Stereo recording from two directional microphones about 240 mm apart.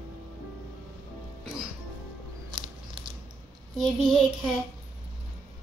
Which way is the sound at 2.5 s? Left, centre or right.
Right.